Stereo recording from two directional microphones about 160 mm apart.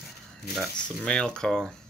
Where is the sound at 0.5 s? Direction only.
5° left (ahead or behind).